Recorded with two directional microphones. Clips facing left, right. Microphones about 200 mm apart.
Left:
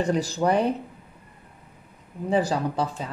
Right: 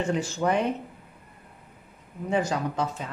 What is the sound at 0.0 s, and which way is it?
Speech, 35° left (ahead or behind).